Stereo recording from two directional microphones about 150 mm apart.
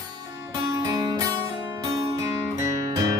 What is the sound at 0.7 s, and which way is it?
Music, 25° right (ahead or behind).